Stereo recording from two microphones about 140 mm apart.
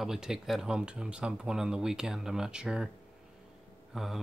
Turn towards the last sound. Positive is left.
turn(degrees=-5)  # may be behind; listen again after turning